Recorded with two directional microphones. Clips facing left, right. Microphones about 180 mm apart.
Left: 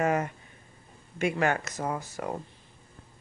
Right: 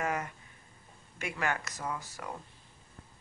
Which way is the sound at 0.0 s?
30° left (ahead or behind).